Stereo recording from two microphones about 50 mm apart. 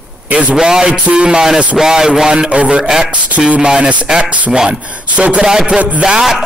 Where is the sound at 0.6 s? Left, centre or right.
Centre.